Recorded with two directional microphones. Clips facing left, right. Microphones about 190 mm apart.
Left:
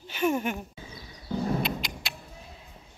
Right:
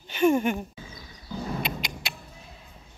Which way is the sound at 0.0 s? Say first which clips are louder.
Right 5 dB; 5° left (ahead or behind).